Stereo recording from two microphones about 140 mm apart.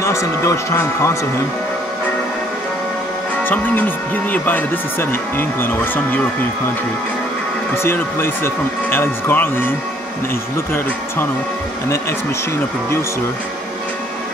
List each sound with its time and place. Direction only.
0.0 s speech: 20° left (ahead or behind)
3.4 s speech: 10° left (ahead or behind)
7.7 s speech: 15° left (ahead or behind)